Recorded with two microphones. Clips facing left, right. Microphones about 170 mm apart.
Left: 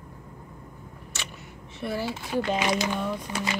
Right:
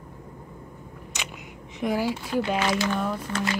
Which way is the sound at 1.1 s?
15° right (ahead or behind).